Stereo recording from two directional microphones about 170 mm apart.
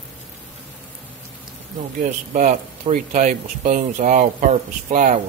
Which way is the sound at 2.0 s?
50° right (ahead or behind).